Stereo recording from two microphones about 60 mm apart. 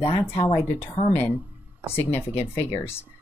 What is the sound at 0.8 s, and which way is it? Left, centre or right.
Speech, left.